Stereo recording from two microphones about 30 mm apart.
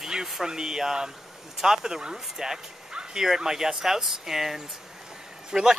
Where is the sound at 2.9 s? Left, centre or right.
Right.